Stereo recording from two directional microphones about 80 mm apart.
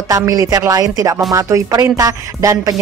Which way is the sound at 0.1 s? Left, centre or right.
Right.